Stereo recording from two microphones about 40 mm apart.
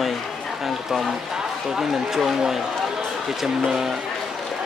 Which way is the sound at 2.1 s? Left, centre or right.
Centre.